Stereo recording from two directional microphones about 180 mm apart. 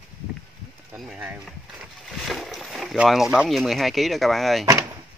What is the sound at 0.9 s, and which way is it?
Speech, 5° right (ahead or behind).